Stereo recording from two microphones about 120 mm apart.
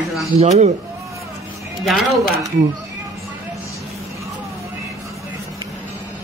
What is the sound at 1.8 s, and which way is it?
Speech, centre (ahead or behind).